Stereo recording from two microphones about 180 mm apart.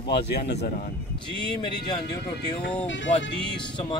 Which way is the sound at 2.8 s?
90° left.